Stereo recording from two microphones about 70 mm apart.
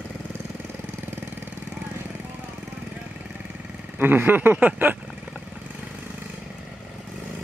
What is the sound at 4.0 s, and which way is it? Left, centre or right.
Speech, right.